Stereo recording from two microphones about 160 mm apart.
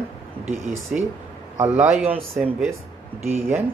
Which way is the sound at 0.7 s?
Centre (ahead or behind).